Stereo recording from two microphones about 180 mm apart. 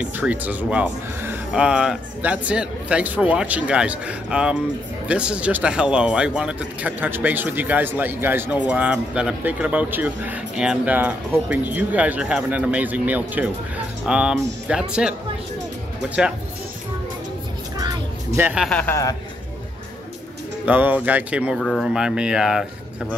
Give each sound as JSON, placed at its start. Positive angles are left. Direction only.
{"t": 0.0, "sound": "speech", "side_deg": -5}
{"t": 17.7, "sound": "music", "side_deg": -20}
{"t": 18.5, "sound": "speech", "side_deg": 0}
{"t": 20.6, "sound": "speech", "side_deg": -10}